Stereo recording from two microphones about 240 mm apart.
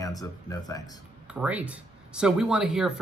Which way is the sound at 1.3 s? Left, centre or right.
Centre.